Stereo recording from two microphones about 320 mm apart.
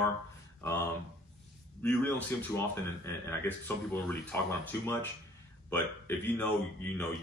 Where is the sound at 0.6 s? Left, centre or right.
Centre.